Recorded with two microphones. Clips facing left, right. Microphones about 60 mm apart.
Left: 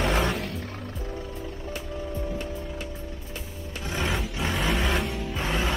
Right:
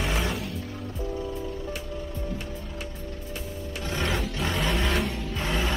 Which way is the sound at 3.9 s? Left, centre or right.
Centre.